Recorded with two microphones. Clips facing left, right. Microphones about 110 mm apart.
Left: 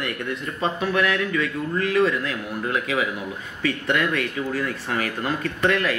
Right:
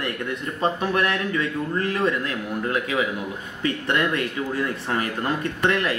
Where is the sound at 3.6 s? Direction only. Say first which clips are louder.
Even; 25° right (ahead or behind).